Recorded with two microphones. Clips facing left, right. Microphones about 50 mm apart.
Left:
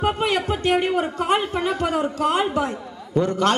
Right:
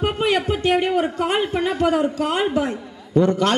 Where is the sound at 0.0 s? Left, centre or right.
Right.